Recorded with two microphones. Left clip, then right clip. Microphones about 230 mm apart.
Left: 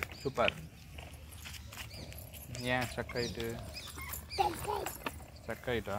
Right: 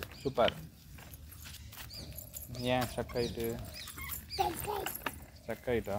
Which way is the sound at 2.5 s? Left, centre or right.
Centre.